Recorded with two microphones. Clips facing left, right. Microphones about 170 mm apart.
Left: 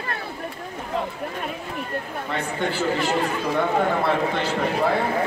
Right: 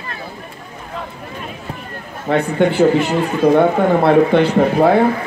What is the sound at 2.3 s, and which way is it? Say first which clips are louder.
A man's voice: right 12 dB; 60° right (ahead or behind).